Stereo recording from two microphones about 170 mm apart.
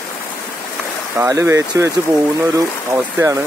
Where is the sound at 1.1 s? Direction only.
15° right (ahead or behind).